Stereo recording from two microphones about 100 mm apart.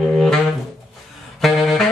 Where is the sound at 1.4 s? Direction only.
Centre (ahead or behind).